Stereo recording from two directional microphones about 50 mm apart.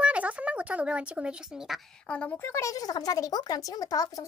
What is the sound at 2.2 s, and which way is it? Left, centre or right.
Speech, left.